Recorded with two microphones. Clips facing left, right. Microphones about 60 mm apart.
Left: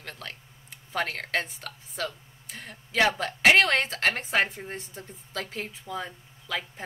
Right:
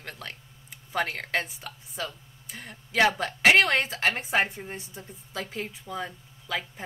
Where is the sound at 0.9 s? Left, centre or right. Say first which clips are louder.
Right 1 dB; centre.